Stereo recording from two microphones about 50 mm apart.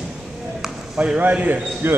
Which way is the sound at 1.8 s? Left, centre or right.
Right.